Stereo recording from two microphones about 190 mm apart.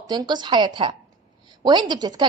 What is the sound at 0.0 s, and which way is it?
Speech, 20° right (ahead or behind).